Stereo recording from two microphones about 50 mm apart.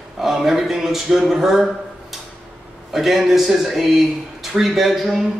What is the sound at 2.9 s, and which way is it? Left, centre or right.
Speech, centre.